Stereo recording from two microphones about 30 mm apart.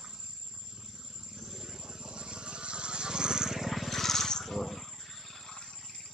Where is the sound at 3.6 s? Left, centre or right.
Centre.